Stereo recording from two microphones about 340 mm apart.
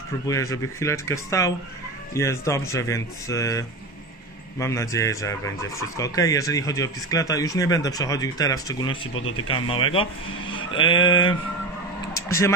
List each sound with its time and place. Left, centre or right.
0.3 s speech: centre
9.1 s speech: left
9.5 s speech: centre
12.1 s a sound: centre